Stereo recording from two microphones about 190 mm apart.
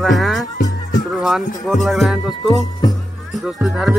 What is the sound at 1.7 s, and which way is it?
Speech, centre (ahead or behind).